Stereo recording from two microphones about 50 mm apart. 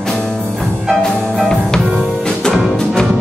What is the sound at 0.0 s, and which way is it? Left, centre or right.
Music, centre.